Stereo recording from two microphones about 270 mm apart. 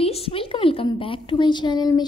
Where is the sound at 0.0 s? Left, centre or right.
Left.